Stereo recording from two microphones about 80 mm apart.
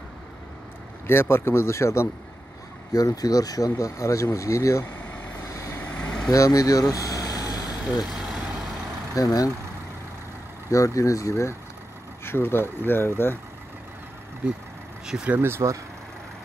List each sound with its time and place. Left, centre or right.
1.0 s speech: left
2.9 s speech: left
5.4 s vehicle: left
5.8 s vehicle: centre
6.3 s speech: left
7.6 s vehicle: centre
9.1 s speech: left
10.7 s speech: left
15.0 s speech: centre
15.3 s speech: right